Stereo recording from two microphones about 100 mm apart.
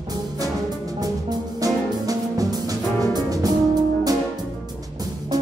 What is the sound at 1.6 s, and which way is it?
Music, 35° right (ahead or behind).